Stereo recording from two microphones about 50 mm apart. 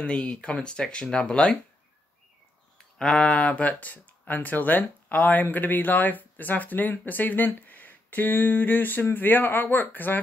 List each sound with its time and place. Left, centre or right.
0.0 s speech: left
3.0 s speech: centre
3.3 s speech: left